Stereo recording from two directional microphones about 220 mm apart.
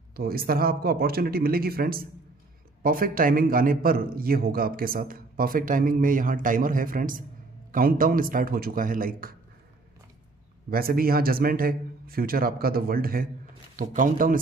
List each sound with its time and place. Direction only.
0.1 s a man's voice: 45° right (ahead or behind)
10.7 s a man's voice: 45° right (ahead or behind)